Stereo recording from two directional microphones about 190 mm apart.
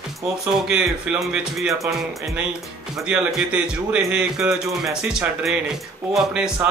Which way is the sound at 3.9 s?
5° right (ahead or behind).